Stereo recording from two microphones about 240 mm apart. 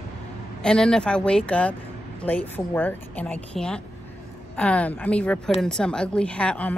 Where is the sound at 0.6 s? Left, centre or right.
Centre.